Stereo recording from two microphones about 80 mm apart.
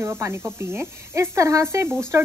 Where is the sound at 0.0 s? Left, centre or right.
Right.